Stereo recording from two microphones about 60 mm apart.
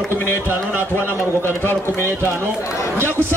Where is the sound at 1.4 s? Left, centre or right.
Left.